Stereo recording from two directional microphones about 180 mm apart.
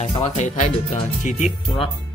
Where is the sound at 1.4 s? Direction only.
Centre (ahead or behind).